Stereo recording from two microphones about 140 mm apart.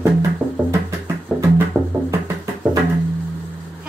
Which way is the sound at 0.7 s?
20° right (ahead or behind).